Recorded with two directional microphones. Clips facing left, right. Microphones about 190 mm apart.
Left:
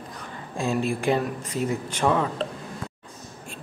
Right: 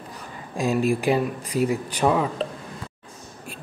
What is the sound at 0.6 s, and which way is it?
Speech, 15° right (ahead or behind).